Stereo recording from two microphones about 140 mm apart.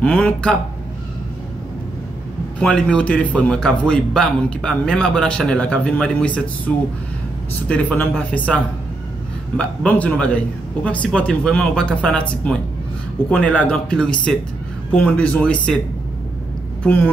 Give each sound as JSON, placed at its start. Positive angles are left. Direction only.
{"t": 0.0, "sound": "a man's voice", "side_deg": 10}
{"t": 2.6, "sound": "a man's voice", "side_deg": 5}
{"t": 7.6, "sound": "a man's voice", "side_deg": 10}
{"t": 9.6, "sound": "a man's voice", "side_deg": 10}
{"t": 16.8, "sound": "a man's voice", "side_deg": 10}